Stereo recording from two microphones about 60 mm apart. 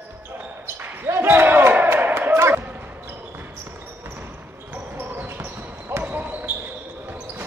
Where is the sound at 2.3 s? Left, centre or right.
Right.